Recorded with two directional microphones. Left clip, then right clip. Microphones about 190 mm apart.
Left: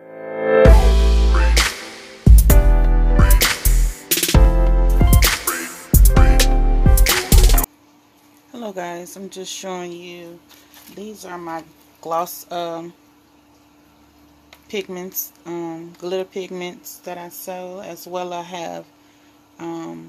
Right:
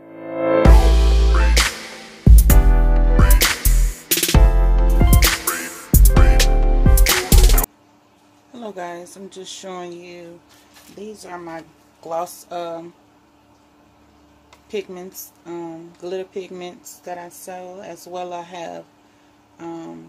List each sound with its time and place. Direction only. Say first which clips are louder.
0.9 s music: even; 10° right (ahead or behind)
8.5 s speech: left 2 dB; 25° left (ahead or behind)
14.7 s speech: left 1 dB; 30° left (ahead or behind)